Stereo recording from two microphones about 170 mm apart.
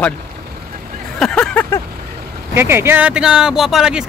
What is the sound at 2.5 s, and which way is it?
Speech, 15° right (ahead or behind).